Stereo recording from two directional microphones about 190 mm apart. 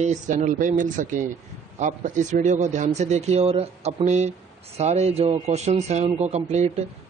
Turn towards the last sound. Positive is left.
turn(degrees=-35)  # may be behind; listen again after turning